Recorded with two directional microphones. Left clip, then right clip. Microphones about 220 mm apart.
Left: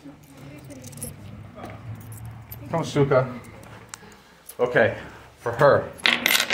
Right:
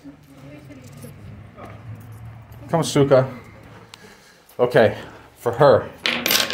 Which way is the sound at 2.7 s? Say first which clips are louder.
Right 5 dB; 55° right (ahead or behind).